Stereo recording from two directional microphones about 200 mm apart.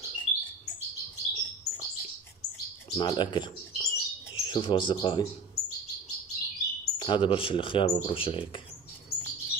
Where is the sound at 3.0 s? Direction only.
20° left (ahead or behind).